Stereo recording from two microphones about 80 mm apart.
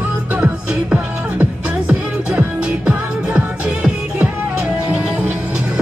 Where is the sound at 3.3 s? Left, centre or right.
Centre.